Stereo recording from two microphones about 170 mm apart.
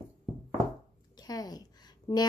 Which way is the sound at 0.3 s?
Centre (ahead or behind).